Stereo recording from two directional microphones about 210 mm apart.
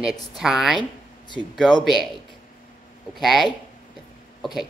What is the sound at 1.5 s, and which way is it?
Speech, centre (ahead or behind).